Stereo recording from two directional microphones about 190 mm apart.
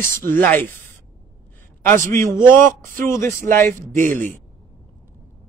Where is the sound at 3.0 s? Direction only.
15° left (ahead or behind).